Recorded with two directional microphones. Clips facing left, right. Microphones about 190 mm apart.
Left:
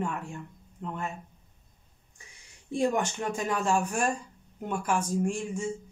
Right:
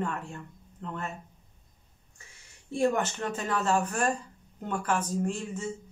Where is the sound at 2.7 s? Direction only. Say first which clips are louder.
Even; 15° left (ahead or behind).